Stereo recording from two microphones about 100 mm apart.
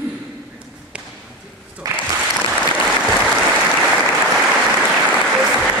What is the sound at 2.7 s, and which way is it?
Applause, 10° left (ahead or behind).